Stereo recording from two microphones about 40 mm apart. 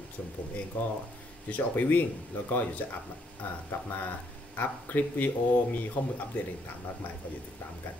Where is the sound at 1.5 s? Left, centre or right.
Left.